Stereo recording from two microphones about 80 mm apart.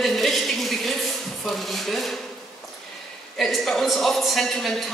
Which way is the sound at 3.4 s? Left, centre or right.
Centre.